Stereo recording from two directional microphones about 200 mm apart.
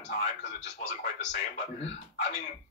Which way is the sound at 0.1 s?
35° left (ahead or behind).